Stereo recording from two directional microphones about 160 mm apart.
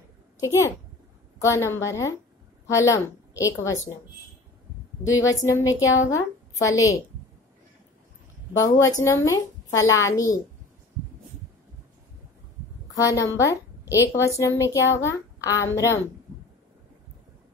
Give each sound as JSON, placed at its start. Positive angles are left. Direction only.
{"t": 1.4, "sound": "a woman's voice", "side_deg": 15}
{"t": 5.0, "sound": "a woman's voice", "side_deg": 20}
{"t": 8.5, "sound": "a woman's voice", "side_deg": 20}
{"t": 12.9, "sound": "a woman's voice", "side_deg": 20}